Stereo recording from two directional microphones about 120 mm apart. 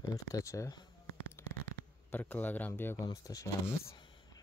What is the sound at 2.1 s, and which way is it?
Speech, 15° left (ahead or behind).